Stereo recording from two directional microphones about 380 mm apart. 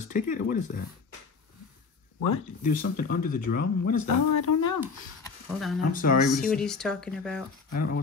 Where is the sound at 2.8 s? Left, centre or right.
Left.